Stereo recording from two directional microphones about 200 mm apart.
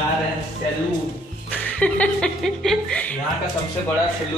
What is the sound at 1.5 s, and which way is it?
Speech, 5° left (ahead or behind).